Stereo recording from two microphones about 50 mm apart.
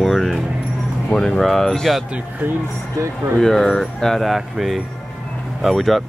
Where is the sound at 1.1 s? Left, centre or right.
Centre.